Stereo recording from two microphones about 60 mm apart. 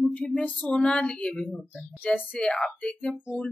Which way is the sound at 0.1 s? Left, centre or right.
Centre.